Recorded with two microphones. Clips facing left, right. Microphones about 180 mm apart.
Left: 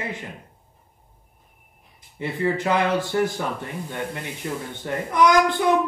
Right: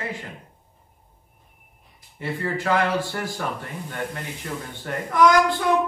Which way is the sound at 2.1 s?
20° left (ahead or behind).